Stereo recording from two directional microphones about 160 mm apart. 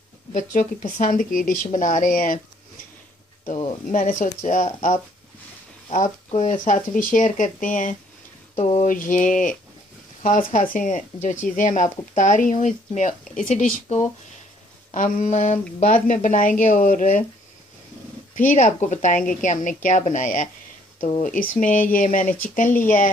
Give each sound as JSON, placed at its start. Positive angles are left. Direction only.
{"t": 0.3, "sound": "speech", "side_deg": 55}
{"t": 3.8, "sound": "speech", "side_deg": 55}
{"t": 18.4, "sound": "speech", "side_deg": 55}